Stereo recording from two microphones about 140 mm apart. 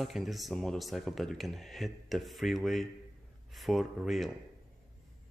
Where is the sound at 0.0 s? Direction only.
Centre (ahead or behind).